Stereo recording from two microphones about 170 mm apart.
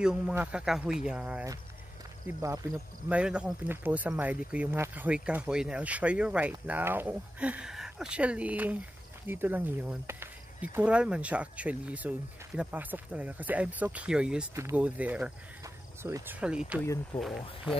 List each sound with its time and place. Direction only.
0.0 s speech: 5° right (ahead or behind)
2.2 s speech: 20° right (ahead or behind)
3.1 s speech: 5° right (ahead or behind)
14.5 s speech: 15° right (ahead or behind); by 17.7 s centre (ahead or behind)